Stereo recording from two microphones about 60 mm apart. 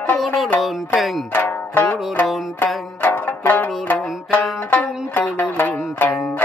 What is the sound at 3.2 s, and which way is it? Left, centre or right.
Music, left.